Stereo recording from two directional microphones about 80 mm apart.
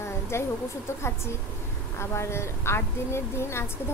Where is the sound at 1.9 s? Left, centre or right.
Left.